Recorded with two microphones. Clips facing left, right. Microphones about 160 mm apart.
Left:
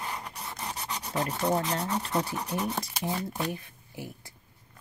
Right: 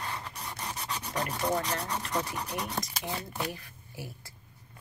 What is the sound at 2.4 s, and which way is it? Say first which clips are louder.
Speech: left 3 dB; 10° left (ahead or behind).